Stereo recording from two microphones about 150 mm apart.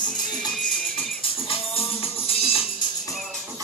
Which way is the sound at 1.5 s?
40° left (ahead or behind).